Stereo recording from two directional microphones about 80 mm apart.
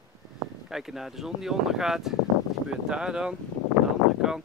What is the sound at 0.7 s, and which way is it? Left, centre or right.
Speech, centre.